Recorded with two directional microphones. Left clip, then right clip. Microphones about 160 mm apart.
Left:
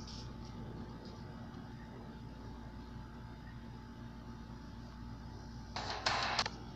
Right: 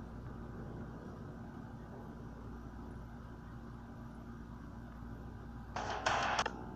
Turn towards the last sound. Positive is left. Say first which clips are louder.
# right 1 dB
turn(degrees=-5)  # may be behind; listen again after turning